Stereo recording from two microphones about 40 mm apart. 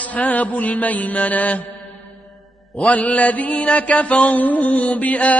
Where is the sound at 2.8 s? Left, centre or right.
Left.